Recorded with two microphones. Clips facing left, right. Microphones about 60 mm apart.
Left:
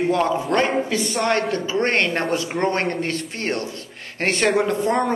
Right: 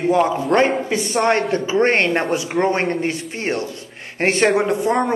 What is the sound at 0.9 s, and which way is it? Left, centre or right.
A man's voice, right.